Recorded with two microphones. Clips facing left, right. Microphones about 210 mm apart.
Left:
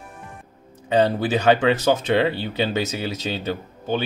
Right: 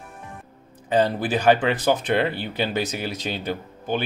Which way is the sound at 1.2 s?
25° left (ahead or behind).